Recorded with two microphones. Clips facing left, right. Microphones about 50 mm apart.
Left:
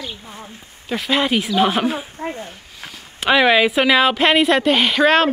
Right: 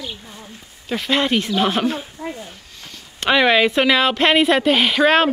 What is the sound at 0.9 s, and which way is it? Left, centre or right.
A woman's voice, centre.